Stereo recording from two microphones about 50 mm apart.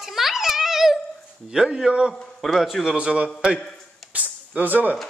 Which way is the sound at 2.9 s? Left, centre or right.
Right.